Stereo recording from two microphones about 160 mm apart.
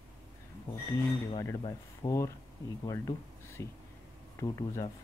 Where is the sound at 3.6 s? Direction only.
20° left (ahead or behind).